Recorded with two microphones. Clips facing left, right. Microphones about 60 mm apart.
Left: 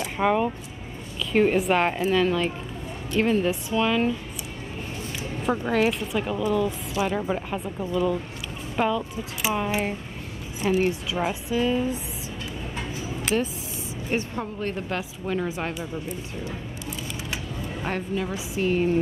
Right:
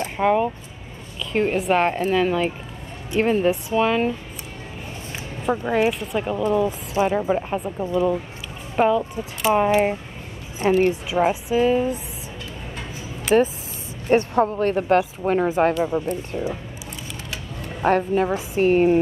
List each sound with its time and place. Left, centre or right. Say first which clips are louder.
0.2 s a woman's voice: right 3 dB; centre
5.4 s speech: right 3 dB; centre
6.5 s a woman's voice: right 4 dB; right
7.1 s speech: right 5 dB; centre
10.6 s a woman's voice: right 5 dB; right
11.1 s a woman's voice: right 6 dB; right
13.3 s a woman's voice: right 9 dB; right
14.0 s a woman's voice: right 11 dB; right
15.9 s a woman's voice: right 9 dB; right
17.8 s a woman's voice: right 10 dB; right